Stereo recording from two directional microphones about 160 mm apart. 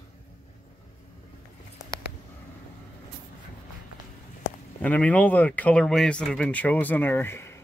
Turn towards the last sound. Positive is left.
turn(degrees=15)  # may be behind; listen again after turning